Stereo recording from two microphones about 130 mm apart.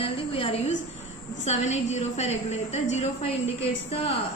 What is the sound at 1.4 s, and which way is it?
A woman's voice, 60° left (ahead or behind).